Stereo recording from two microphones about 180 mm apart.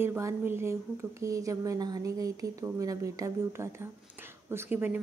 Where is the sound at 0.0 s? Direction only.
10° right (ahead or behind).